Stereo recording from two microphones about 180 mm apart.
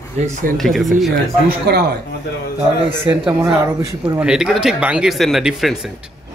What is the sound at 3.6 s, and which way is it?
Speech, 15° right (ahead or behind).